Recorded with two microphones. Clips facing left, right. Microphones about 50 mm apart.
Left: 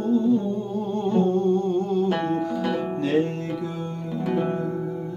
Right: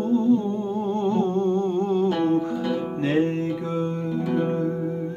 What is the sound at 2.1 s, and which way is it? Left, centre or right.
Music, left.